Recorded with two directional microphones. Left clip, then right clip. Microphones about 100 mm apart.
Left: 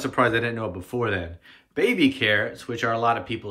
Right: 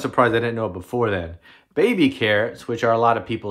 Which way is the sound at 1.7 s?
40° right (ahead or behind).